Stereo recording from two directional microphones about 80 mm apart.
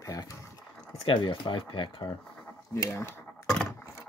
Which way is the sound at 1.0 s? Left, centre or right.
Left.